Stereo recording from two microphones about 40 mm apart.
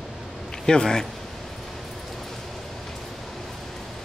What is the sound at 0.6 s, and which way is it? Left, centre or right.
Speech, centre.